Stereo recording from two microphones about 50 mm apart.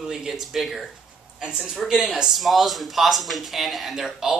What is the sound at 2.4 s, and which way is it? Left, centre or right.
Speech, centre.